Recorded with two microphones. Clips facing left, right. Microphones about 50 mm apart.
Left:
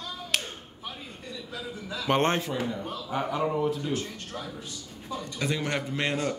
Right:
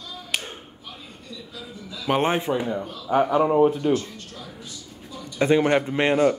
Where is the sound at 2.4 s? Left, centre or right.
Centre.